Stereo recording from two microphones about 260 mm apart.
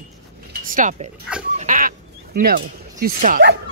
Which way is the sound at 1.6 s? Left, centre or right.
Right.